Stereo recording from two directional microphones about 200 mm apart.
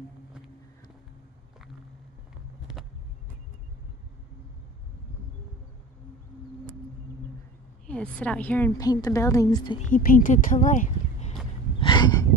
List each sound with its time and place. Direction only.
7.8 s a woman's voice: 5° left (ahead or behind)
9.8 s speech: 40° left (ahead or behind)
11.8 s a sound: 20° left (ahead or behind)